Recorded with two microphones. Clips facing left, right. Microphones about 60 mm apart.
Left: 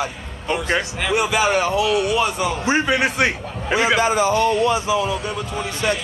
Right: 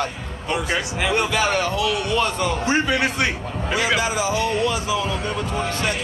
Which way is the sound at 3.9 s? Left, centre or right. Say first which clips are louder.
Left 4 dB; left.